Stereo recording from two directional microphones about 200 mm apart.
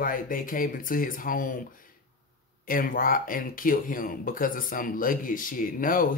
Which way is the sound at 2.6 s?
45° left (ahead or behind).